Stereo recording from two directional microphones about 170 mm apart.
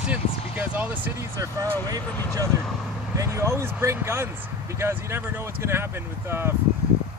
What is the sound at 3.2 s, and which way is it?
Speech, 15° right (ahead or behind).